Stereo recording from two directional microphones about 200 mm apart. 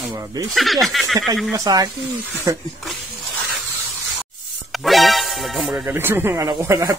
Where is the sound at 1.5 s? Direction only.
20° right (ahead or behind).